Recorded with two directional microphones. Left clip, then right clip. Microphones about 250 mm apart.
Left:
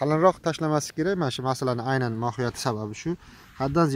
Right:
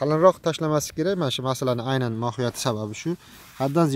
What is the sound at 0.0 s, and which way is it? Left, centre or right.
Speech, centre.